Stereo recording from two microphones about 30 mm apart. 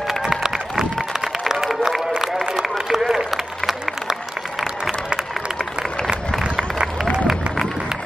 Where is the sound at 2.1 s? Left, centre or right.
Right.